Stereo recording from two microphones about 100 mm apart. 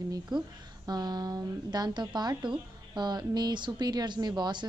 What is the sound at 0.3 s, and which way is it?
A woman's voice, 45° right (ahead or behind).